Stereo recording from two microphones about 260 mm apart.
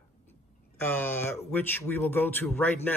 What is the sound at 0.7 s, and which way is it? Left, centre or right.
Speech, centre.